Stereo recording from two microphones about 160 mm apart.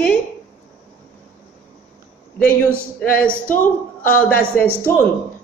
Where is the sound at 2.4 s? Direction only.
10° left (ahead or behind).